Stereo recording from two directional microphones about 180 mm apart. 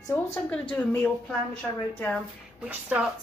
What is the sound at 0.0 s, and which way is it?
A woman's voice, 10° left (ahead or behind).